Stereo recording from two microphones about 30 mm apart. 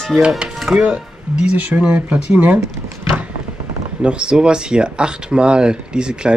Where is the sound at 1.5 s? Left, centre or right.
Right.